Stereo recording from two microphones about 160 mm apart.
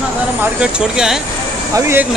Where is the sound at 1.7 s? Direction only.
15° right (ahead or behind).